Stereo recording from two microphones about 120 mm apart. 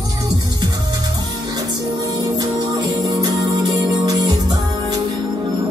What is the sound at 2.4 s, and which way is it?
Music, 35° right (ahead or behind).